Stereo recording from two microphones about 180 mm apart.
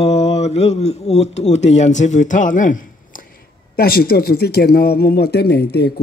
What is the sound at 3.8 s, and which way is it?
Speech, 55° left (ahead or behind).